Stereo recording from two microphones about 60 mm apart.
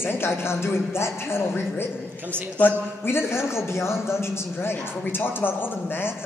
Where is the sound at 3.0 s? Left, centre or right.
Left.